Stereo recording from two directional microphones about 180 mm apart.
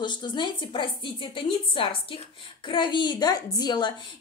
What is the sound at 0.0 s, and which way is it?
A woman's voice, 25° left (ahead or behind).